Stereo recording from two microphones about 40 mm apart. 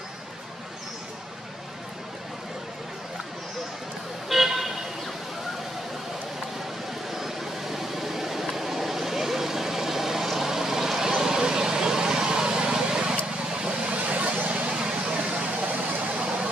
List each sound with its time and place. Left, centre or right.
4.3 s vehicle: centre
7.1 s vehicle: centre; by 13.9 s right
13.9 s vehicle: right